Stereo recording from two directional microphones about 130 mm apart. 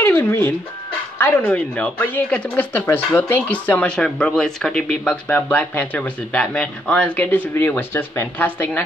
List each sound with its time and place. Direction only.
0.0 s speech: 20° left (ahead or behind)